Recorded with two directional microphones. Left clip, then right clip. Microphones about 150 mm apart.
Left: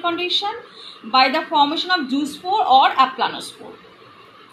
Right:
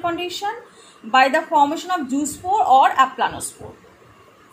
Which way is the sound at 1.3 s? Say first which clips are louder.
Right 1 dB; 5° right (ahead or behind).